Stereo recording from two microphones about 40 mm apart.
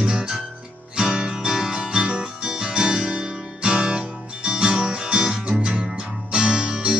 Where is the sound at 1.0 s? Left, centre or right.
Centre.